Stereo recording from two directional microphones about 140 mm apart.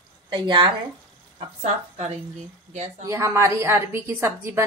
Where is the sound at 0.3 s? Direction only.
35° right (ahead or behind).